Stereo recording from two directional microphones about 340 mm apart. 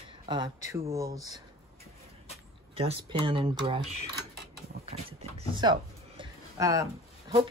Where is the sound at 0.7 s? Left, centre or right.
Centre.